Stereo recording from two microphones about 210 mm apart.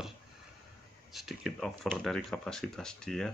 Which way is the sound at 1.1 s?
Centre (ahead or behind).